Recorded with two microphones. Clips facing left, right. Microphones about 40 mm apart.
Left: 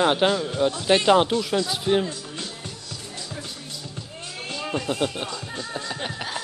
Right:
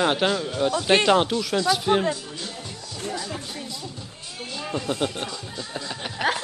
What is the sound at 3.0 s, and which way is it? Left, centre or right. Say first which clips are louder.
Music: right 7 dB; right.